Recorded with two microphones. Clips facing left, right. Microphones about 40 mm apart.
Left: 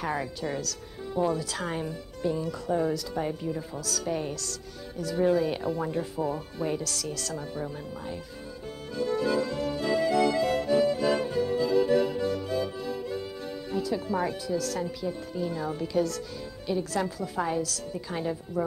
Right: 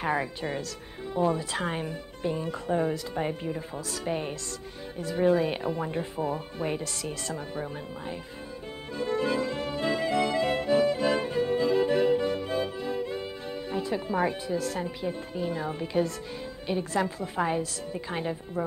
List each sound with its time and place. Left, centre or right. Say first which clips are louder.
0.0 s speech: right 2 dB; right
8.9 s accordion: left 1 dB; right
13.7 s speech: left 1 dB; right